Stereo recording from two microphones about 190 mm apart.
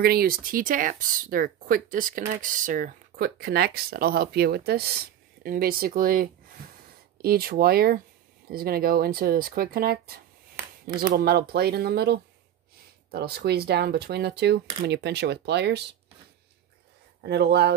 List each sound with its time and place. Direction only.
0.0 s speech: 55° right (ahead or behind)
17.2 s speech: 60° right (ahead or behind)